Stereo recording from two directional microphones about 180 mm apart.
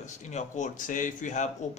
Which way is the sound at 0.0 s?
40° left (ahead or behind).